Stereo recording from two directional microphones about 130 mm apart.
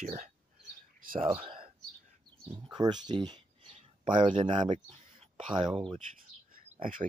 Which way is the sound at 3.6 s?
50° right (ahead or behind).